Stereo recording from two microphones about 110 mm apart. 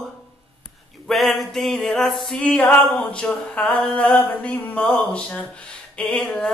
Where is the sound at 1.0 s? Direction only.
Centre (ahead or behind).